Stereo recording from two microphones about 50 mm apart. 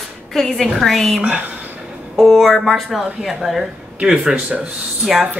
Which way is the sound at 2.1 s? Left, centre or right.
Centre.